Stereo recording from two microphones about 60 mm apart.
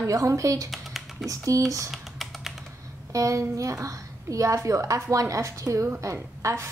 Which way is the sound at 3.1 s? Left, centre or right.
Right.